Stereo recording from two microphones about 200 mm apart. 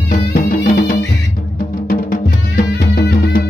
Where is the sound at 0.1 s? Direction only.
45° left (ahead or behind).